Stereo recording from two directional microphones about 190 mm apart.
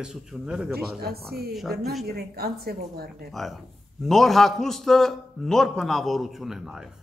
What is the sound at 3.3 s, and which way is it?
A man's voice, centre (ahead or behind).